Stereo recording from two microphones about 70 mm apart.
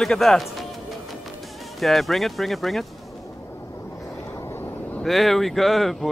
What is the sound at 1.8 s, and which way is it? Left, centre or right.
Speech, centre.